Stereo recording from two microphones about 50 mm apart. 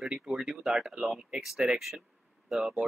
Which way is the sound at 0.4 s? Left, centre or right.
Centre.